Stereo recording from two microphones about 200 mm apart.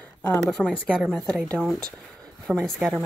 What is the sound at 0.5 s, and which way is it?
Speech, centre (ahead or behind).